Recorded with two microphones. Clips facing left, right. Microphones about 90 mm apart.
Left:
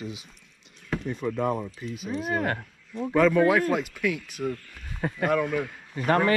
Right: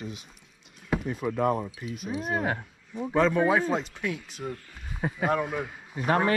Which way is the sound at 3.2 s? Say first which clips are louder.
Left 3 dB; 25° right (ahead or behind).